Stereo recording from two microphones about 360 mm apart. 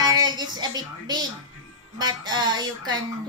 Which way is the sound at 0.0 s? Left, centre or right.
Centre.